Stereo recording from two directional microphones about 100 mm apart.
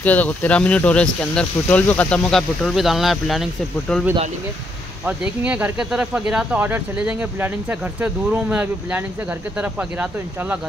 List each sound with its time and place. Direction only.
0.0 s speech: 15° left (ahead or behind)
5.0 s speech: 15° right (ahead or behind)